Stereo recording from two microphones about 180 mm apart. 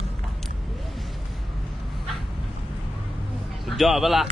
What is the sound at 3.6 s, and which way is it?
Speech, centre (ahead or behind).